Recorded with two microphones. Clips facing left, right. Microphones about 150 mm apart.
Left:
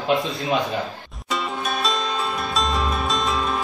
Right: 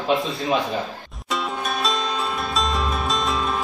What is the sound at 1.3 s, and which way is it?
Music, centre (ahead or behind).